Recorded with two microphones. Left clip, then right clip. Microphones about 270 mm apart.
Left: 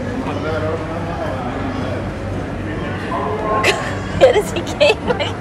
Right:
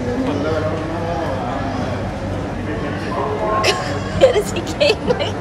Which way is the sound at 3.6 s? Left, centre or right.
Centre.